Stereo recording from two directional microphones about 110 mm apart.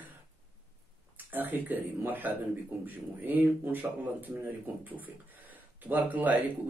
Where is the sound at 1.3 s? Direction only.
15° right (ahead or behind).